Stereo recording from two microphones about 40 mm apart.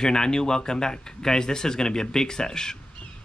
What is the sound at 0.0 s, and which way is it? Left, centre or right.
Speech, centre.